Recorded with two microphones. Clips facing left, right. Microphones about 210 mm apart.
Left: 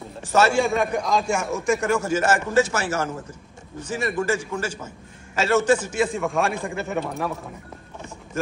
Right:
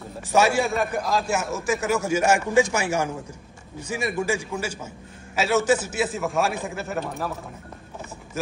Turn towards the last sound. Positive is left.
turn(degrees=0)  # may be behind; listen again after turning